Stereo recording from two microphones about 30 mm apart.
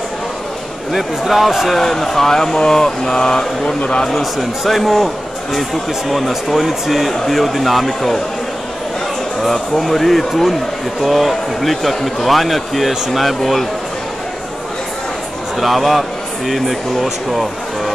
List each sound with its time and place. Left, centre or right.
0.9 s a man's voice: centre
1.7 s speech: centre; by 3.7 s left
4.1 s a man's voice: centre
9.5 s a man's voice: centre
15.6 s a man's voice: centre